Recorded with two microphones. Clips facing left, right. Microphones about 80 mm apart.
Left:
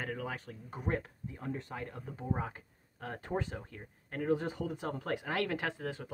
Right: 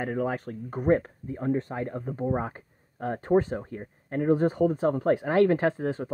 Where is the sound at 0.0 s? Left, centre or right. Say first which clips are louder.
Right 10 dB; right.